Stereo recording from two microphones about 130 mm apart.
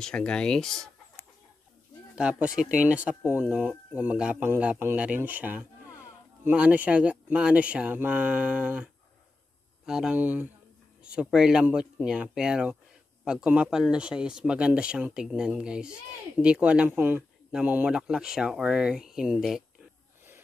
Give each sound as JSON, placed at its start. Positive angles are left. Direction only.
{"t": 0.0, "sound": "speech", "side_deg": 5}
{"t": 2.1, "sound": "speech", "side_deg": -10}